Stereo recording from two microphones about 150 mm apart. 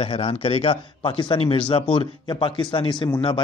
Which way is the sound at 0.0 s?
40° left (ahead or behind).